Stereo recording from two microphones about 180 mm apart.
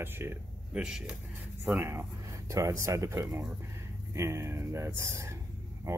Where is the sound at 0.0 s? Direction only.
10° right (ahead or behind).